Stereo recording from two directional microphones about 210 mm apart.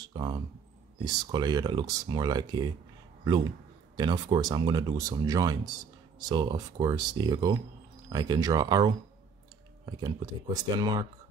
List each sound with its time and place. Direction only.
0.0 s speech: 20° right (ahead or behind)
3.9 s speech: 20° right (ahead or behind)